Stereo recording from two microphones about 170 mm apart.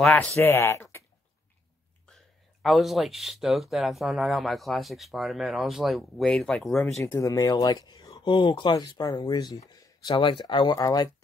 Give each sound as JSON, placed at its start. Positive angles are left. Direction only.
{"t": 0.0, "sound": "speech", "side_deg": 5}
{"t": 2.6, "sound": "speech", "side_deg": 0}
{"t": 7.0, "sound": "speech", "side_deg": 15}